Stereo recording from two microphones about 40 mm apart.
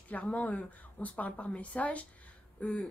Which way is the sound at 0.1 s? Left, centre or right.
Left.